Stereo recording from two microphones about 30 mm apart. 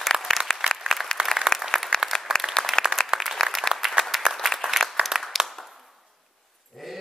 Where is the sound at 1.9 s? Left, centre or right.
Left.